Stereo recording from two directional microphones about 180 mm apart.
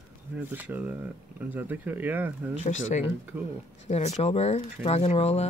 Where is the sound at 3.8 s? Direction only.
40° left (ahead or behind).